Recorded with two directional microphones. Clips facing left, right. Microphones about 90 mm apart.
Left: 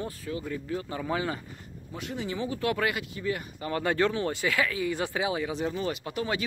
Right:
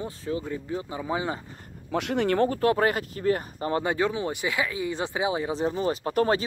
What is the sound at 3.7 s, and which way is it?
Speech, 20° right (ahead or behind).